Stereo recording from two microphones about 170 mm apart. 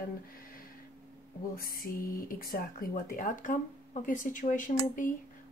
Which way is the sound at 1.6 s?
60° left (ahead or behind).